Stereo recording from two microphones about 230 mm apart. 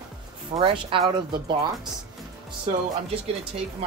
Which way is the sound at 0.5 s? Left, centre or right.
Right.